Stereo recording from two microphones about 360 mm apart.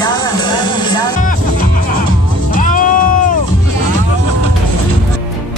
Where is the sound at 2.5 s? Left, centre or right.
Left.